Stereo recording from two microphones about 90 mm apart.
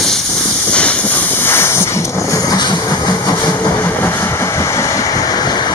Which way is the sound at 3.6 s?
30° left (ahead or behind).